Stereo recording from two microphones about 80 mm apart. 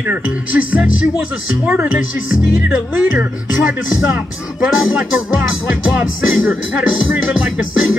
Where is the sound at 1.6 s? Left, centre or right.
Centre.